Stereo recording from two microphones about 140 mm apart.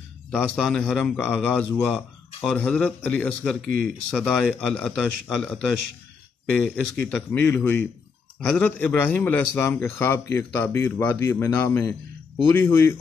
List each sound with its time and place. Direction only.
0.3 s a man's voice: 5° left (ahead or behind)